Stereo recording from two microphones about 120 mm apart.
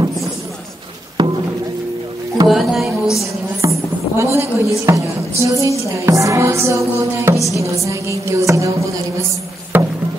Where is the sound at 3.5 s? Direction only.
25° right (ahead or behind).